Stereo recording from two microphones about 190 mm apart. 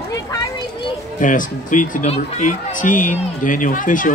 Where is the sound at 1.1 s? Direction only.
45° left (ahead or behind).